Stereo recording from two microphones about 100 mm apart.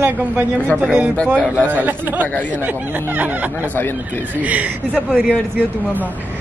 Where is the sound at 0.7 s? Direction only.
10° right (ahead or behind).